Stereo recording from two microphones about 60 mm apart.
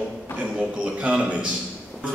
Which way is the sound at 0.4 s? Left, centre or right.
Centre.